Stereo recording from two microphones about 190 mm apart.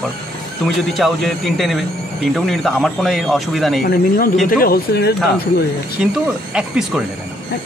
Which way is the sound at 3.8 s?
55° left (ahead or behind).